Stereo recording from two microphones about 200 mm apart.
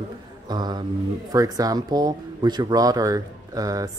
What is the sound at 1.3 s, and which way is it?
Speech, 20° right (ahead or behind).